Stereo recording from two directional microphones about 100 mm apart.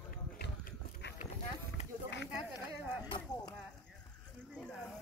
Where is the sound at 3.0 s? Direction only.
45° left (ahead or behind).